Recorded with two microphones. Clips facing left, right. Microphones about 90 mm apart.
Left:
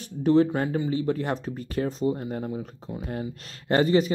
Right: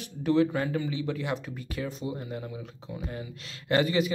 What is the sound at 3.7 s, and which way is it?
Speech, 40° left (ahead or behind).